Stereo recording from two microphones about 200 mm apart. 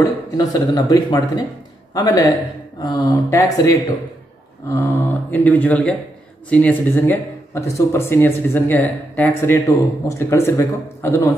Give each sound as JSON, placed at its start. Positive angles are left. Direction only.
{"t": 0.0, "sound": "a man's voice", "side_deg": 20}